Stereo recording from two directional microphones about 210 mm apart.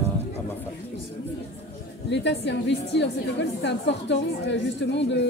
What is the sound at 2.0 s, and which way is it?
A woman's voice, 55° left (ahead or behind).